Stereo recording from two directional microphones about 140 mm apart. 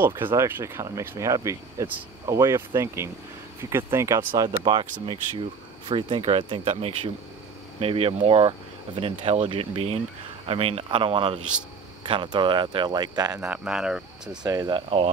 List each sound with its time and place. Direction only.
0.0 s speech: 15° right (ahead or behind)
4.4 s speech: 30° right (ahead or behind)
13.4 s speech: 5° right (ahead or behind)
14.4 s speech: 25° right (ahead or behind)